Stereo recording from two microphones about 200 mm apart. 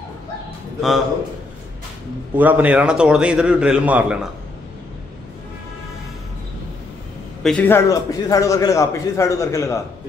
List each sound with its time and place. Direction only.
0.7 s a man's voice: centre (ahead or behind)
2.3 s a man's voice: 10° right (ahead or behind)
7.4 s a man's voice: 10° left (ahead or behind)